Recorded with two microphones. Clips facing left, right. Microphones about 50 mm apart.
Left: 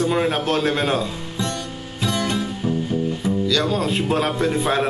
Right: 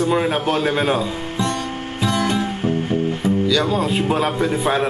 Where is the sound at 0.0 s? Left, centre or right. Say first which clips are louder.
Right 2 dB; centre.